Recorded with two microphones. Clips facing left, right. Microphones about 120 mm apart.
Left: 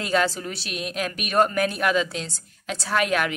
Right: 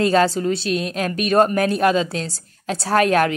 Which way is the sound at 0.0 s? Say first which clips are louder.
Right 7 dB; 35° right (ahead or behind).